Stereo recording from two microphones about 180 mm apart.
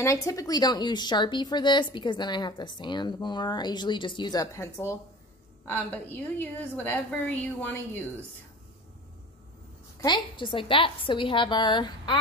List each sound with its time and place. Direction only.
0.0 s a woman's voice: 15° left (ahead or behind)
9.9 s a woman's voice: 25° left (ahead or behind)